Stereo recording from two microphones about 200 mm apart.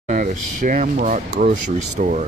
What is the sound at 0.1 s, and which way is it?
Speech, 45° right (ahead or behind).